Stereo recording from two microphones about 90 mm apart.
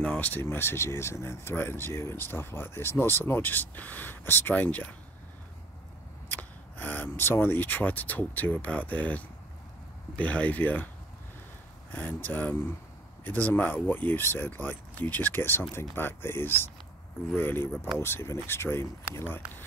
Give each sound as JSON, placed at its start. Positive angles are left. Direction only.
{"t": 0.0, "sound": "speech", "side_deg": 20}
{"t": 6.2, "sound": "speech", "side_deg": 20}
{"t": 11.9, "sound": "speech", "side_deg": 20}